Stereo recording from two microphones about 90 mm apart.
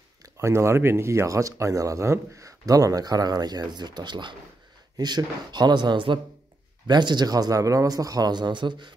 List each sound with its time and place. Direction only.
0.2 s speech: 30° right (ahead or behind); by 8.9 s 60° right (ahead or behind)